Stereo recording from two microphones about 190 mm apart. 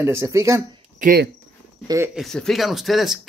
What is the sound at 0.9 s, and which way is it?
Speech, 45° right (ahead or behind).